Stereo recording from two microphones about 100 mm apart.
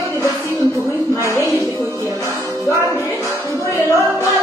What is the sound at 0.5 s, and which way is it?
Music, 30° right (ahead or behind).